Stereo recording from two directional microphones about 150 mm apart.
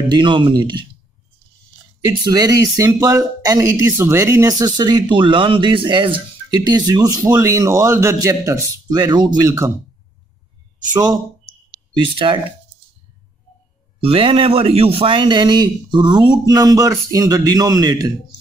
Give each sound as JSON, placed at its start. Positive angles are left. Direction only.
{"t": 0.1, "sound": "speech", "side_deg": -30}
{"t": 2.0, "sound": "speech", "side_deg": -25}
{"t": 10.9, "sound": "speech", "side_deg": -25}
{"t": 14.0, "sound": "speech", "side_deg": -35}